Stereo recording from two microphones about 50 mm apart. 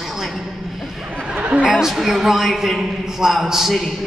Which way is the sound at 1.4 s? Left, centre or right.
Right.